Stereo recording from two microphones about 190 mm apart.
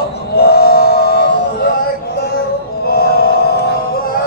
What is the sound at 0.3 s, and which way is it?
Train, 60° left (ahead or behind).